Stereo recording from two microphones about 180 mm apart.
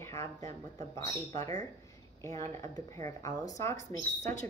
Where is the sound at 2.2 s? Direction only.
15° left (ahead or behind).